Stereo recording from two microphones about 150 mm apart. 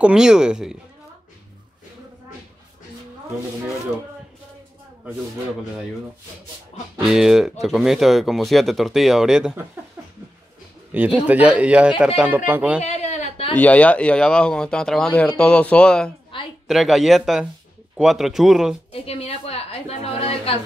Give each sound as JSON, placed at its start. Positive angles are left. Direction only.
{"t": 0.0, "sound": "speech", "side_deg": -5}
{"t": 7.1, "sound": "speech", "side_deg": -5}
{"t": 10.9, "sound": "speech", "side_deg": -10}
{"t": 12.8, "sound": "a sound", "side_deg": 50}
{"t": 13.6, "sound": "speech", "side_deg": 10}
{"t": 16.3, "sound": "a woman's voice", "side_deg": 35}
{"t": 16.6, "sound": "speech", "side_deg": 0}
{"t": 18.9, "sound": "a woman's voice", "side_deg": 40}